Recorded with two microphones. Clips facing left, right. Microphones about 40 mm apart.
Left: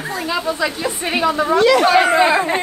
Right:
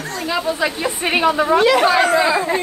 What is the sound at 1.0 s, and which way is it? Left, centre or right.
Speech, right.